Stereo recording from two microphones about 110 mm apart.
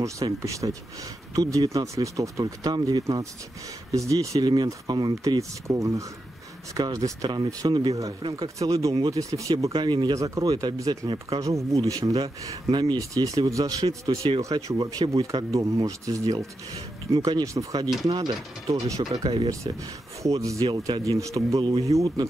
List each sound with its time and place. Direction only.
0.0 s speech: 30° right (ahead or behind)
5.4 s speech: 30° right (ahead or behind); by 8.5 s 50° right (ahead or behind)
8.5 s speech: 30° right (ahead or behind)
9.7 s speech: 45° right (ahead or behind)
10.1 s speech: 30° right (ahead or behind)
13.8 s speech: 55° right (ahead or behind)
14.8 s speech: 40° right (ahead or behind)
20.3 s speech: 30° right (ahead or behind)
21.5 s speech: 45° right (ahead or behind)
21.9 s speech: 30° right (ahead or behind)